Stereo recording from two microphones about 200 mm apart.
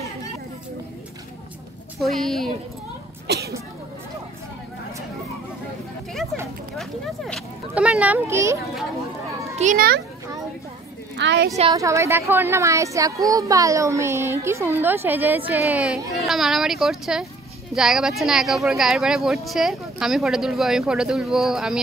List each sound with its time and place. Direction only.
2.0 s speech: centre (ahead or behind)
3.3 s a sound: 55° right (ahead or behind)
6.8 s speech: centre (ahead or behind)
9.6 s a child's voice: 40° right (ahead or behind)
11.1 s a woman's voice: 60° right (ahead or behind)
11.7 s speech: 15° right (ahead or behind)